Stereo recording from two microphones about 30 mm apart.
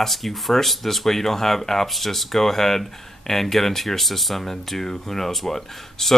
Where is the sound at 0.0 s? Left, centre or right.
Centre.